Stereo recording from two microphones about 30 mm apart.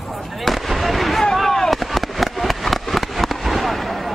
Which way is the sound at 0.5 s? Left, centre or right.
Centre.